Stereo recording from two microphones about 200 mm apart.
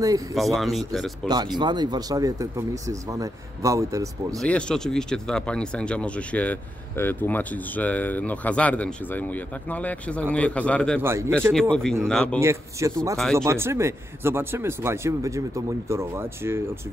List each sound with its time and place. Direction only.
0.0 s speech: 15° right (ahead or behind)
0.4 s speech: centre (ahead or behind)
1.6 s speech: 20° right (ahead or behind)
4.4 s speech: 5° left (ahead or behind)
11.0 s speech: 10° right (ahead or behind)
11.7 s speech: 5° left (ahead or behind)
12.4 s speech: 15° right (ahead or behind)